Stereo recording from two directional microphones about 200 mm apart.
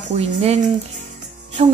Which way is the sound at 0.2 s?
30° right (ahead or behind).